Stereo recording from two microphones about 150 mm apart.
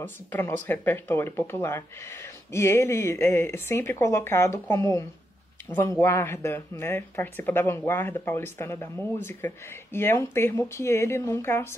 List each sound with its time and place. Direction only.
0.0 s speech: 15° left (ahead or behind)